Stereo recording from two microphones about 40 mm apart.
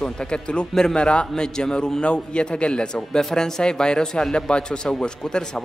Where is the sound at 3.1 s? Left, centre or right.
Centre.